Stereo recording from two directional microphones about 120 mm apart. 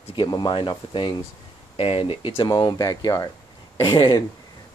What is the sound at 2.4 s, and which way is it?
Speech, 35° left (ahead or behind).